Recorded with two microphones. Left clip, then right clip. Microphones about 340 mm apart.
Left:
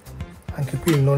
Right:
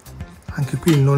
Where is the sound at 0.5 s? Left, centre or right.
Right.